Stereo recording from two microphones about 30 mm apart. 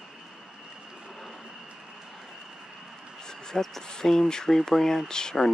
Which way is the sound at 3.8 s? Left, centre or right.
Left.